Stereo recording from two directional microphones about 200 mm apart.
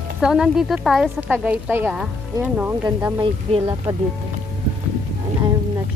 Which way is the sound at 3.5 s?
30° right (ahead or behind).